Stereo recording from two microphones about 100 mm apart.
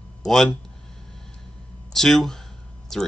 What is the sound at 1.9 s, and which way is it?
Speech, 5° left (ahead or behind).